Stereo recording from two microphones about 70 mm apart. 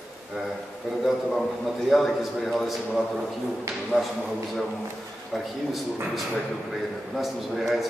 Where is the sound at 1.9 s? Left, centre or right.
Centre.